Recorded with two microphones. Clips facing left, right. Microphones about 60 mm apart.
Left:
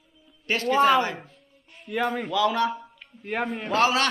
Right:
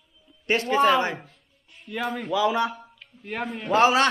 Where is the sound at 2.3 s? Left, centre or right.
Centre.